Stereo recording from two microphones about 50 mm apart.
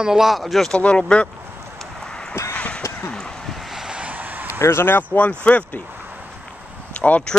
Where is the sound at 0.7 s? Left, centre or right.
Left.